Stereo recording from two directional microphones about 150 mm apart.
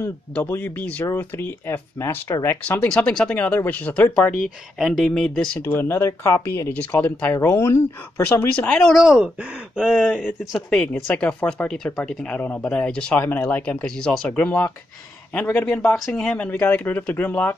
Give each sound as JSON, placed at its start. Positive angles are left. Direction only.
{"t": 0.0, "sound": "speech", "side_deg": 15}
{"t": 4.7, "sound": "speech", "side_deg": 0}
{"t": 5.6, "sound": "speech", "side_deg": 15}